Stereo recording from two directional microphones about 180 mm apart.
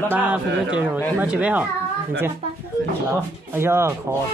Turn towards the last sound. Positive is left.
turn(degrees=-15)  # may be behind; listen again after turning